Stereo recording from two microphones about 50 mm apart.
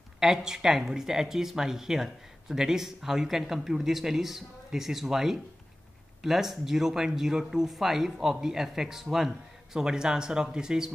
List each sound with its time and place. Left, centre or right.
0.2 s speech: centre